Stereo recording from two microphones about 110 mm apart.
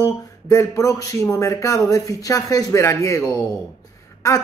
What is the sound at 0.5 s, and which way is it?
A man's voice, 30° left (ahead or behind).